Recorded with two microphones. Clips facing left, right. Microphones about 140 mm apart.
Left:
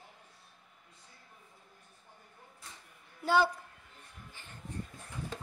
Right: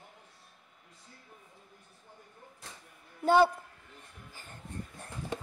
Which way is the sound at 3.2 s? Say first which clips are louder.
Right 5 dB; 55° right (ahead or behind).